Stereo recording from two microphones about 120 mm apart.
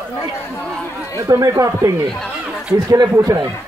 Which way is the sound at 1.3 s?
25° right (ahead or behind).